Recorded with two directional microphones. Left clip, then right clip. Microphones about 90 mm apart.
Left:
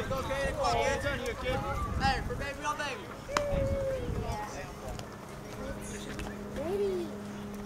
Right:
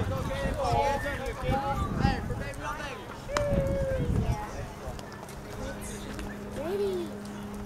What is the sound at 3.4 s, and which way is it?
Run, centre (ahead or behind).